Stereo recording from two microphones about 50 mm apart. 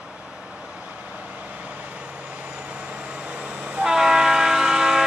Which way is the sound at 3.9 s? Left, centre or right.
Centre.